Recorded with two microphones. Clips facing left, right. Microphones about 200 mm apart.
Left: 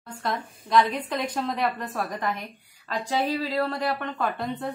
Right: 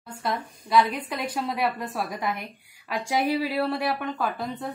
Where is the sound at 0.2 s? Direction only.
10° right (ahead or behind).